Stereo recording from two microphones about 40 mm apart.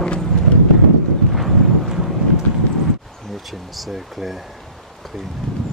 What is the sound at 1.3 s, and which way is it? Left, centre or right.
Wind noise, centre.